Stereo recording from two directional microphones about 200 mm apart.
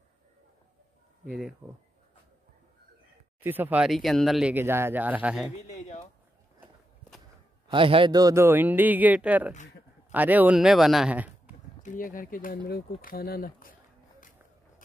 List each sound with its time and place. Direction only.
1.6 s speech: 10° right (ahead or behind)
3.3 s speech: 10° right (ahead or behind)
5.6 s a sound: 35° left (ahead or behind)
7.7 s speech: 25° right (ahead or behind); by 11.3 s 5° right (ahead or behind)
11.8 s speech: 40° left (ahead or behind)